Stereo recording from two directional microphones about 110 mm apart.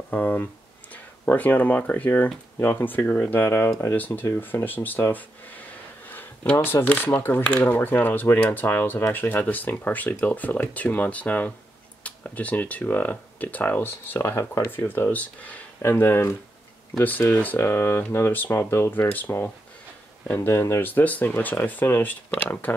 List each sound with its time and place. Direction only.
0.1 s speech: 15° left (ahead or behind)